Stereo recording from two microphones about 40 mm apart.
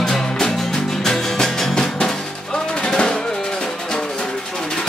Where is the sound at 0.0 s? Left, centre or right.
Centre.